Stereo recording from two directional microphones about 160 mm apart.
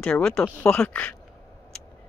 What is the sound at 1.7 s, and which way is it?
Vehicle, 5° left (ahead or behind).